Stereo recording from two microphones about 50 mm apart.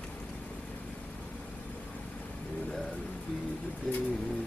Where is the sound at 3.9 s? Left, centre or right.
Centre.